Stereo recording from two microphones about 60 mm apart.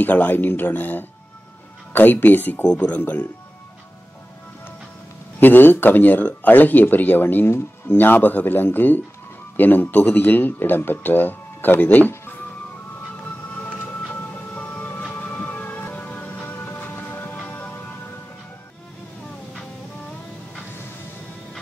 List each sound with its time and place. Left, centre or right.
0.0 s speech: left
2.6 s speech: centre
3.0 s speech: left
5.4 s speech: left
13.2 s music: left